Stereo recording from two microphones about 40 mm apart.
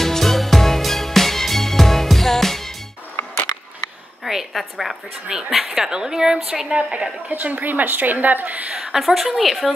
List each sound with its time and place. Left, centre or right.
0.0 s music: centre
4.2 s a sound: centre
5.3 s a woman's voice: centre
6.7 s a woman's voice: right
7.2 s a woman's voice: right
8.7 s a woman's voice: centre
9.0 s a woman's voice: centre